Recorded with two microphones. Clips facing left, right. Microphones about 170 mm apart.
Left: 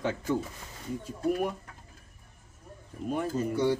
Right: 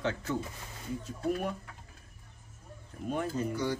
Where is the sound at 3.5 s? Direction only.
25° left (ahead or behind).